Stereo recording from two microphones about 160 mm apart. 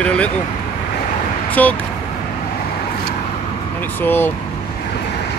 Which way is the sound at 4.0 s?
10° left (ahead or behind).